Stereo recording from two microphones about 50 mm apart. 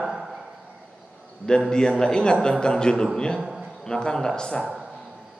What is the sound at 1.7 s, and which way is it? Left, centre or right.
A man's voice, centre.